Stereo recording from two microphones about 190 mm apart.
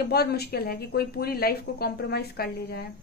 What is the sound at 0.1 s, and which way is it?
A woman's voice, 55° left (ahead or behind).